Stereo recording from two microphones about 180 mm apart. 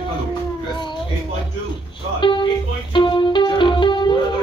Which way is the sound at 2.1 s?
30° left (ahead or behind).